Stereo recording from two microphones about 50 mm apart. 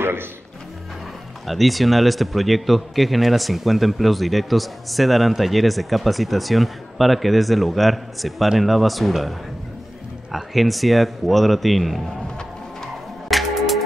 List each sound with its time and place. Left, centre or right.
0.0 s speech: right
1.5 s a man's voice: centre
10.3 s a man's voice: centre
13.3 s music: centre